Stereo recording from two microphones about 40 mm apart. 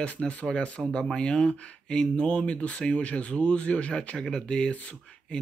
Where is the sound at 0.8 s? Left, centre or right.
Centre.